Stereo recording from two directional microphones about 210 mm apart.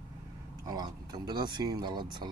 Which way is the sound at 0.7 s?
20° right (ahead or behind).